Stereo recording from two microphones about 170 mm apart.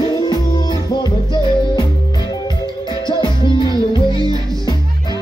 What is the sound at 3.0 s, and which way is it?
Music, 25° left (ahead or behind).